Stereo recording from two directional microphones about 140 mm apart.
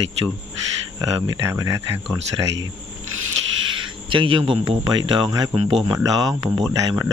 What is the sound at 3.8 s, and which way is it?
Speech, 35° right (ahead or behind).